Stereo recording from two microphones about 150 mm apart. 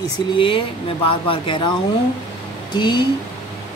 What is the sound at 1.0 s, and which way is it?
Speech, 35° left (ahead or behind).